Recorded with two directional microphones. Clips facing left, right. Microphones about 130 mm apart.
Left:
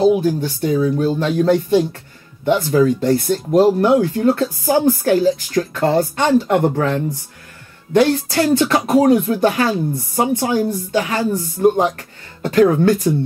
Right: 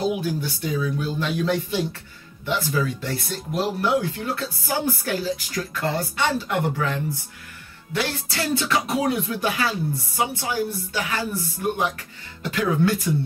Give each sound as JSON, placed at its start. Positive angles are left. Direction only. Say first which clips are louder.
{"t": 0.2, "sound": "speech", "louder": "left 8 dB", "side_deg": 45}
{"t": 8.0, "sound": "speech", "louder": "left 11 dB", "side_deg": 45}
{"t": 11.6, "sound": "speech", "louder": "left 10 dB", "side_deg": 30}
{"t": 12.4, "sound": "speech", "louder": "left 9 dB", "side_deg": 40}